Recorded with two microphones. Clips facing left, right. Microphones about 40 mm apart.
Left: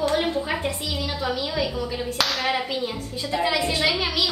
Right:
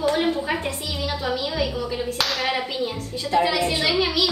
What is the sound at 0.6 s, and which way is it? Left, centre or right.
Speech, centre.